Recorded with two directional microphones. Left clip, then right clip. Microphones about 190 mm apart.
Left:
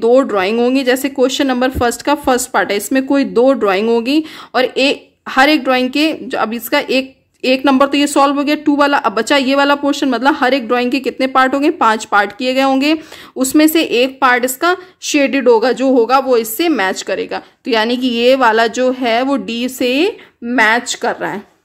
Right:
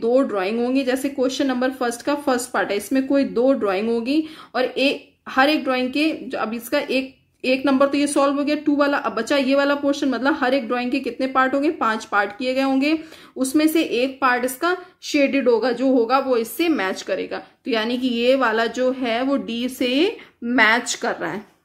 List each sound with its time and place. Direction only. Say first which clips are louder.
0.0 s speech: left 8 dB; 50° left (ahead or behind)